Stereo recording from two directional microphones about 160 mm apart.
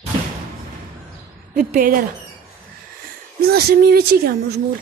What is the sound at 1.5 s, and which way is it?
Speech, 60° right (ahead or behind).